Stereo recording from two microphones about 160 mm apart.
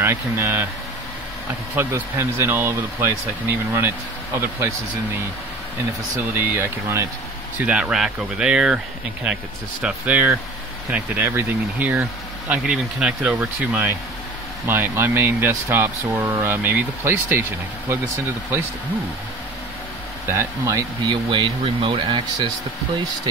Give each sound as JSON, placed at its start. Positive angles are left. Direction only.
{"t": 0.0, "sound": "speech", "side_deg": -15}
{"t": 1.8, "sound": "speech", "side_deg": -15}
{"t": 6.3, "sound": "speech", "side_deg": -15}
{"t": 7.6, "sound": "speech", "side_deg": -5}
{"t": 20.2, "sound": "speech", "side_deg": -20}